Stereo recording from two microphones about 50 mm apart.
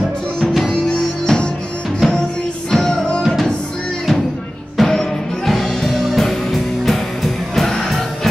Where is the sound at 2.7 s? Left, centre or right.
Centre.